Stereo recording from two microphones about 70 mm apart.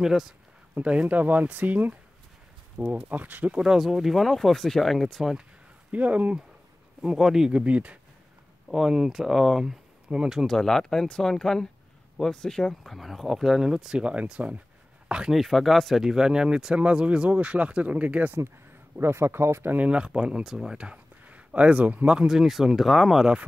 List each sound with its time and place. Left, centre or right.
0.0 s speech: centre
0.7 s speech: centre
3.6 s speech: centre
5.9 s speech: right
7.0 s speech: centre
7.6 s speech: centre
8.6 s speech: centre
10.4 s speech: centre
15.4 s speech: centre; by 18.3 s right
18.9 s speech: right
19.8 s speech: centre